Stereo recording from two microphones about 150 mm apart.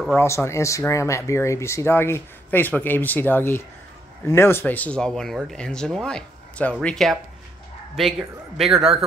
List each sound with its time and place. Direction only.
0.2 s speech: 20° left (ahead or behind)
8.5 s speech: centre (ahead or behind)